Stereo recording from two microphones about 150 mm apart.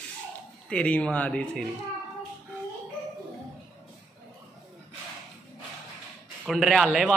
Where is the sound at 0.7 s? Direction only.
5° left (ahead or behind).